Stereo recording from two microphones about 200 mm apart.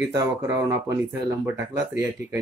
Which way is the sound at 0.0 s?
15° right (ahead or behind).